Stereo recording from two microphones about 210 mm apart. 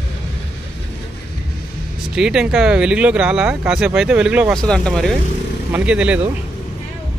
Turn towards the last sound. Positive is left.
turn(degrees=-5)  # may be behind; listen again after turning